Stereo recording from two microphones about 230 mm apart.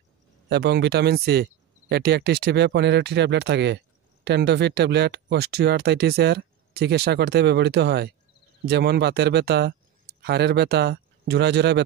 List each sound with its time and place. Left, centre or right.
0.5 s speech: right